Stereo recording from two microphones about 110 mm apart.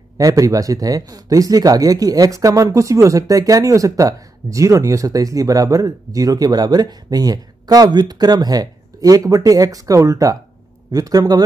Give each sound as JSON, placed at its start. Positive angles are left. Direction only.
{"t": 0.2, "sound": "speech", "side_deg": -30}